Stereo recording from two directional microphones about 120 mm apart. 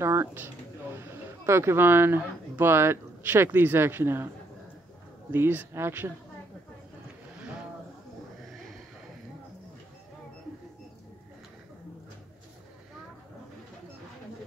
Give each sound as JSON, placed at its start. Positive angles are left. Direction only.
{"t": 0.0, "sound": "speech", "side_deg": -20}
{"t": 5.3, "sound": "speech", "side_deg": -15}